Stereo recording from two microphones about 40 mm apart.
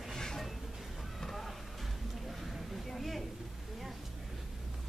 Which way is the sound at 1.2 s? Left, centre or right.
Centre.